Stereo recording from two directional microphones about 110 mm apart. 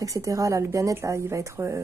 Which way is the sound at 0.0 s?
30° right (ahead or behind).